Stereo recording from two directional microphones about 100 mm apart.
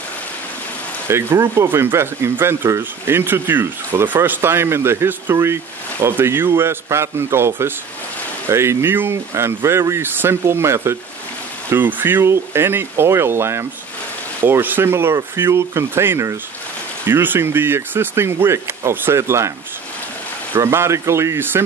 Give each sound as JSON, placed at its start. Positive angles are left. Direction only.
{"t": 1.0, "sound": "speech", "side_deg": -25}
{"t": 20.5, "sound": "speech", "side_deg": -25}